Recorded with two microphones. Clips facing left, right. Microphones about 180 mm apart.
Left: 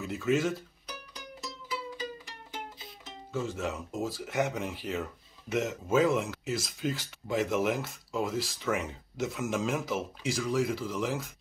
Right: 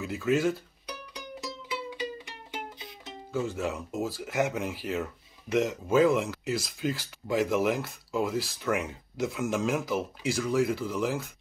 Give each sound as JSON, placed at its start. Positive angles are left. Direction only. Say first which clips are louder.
{"t": 0.0, "sound": "music", "louder": "right 2 dB", "side_deg": 0}
{"t": 3.1, "sound": "speech", "louder": "right 3 dB", "side_deg": 0}